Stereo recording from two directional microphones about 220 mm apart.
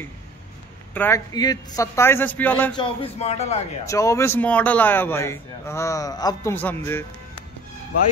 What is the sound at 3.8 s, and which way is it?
Speech, 15° left (ahead or behind).